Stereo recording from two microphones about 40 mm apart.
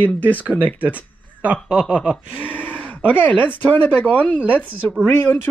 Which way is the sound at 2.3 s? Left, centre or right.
Right.